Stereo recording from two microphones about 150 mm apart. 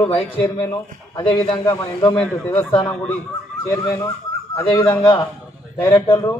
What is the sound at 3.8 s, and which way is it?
A man's voice, 20° left (ahead or behind).